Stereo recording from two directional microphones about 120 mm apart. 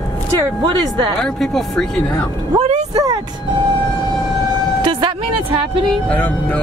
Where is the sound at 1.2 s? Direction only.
Centre (ahead or behind).